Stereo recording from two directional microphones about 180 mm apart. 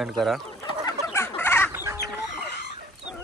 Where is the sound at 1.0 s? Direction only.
15° left (ahead or behind).